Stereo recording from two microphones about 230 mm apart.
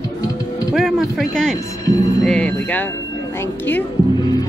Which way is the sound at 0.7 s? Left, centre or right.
Centre.